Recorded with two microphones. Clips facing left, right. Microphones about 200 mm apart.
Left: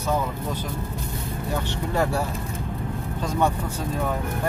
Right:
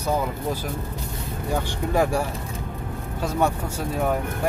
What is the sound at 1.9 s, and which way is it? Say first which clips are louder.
Speech: right 3 dB; 10° right (ahead or behind).